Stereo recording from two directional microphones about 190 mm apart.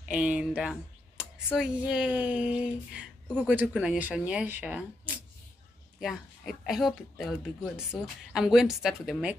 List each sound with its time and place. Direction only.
0.1 s speech: 5° right (ahead or behind)